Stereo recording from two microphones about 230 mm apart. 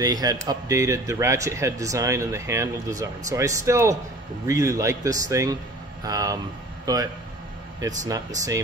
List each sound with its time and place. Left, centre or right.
0.0 s speech: centre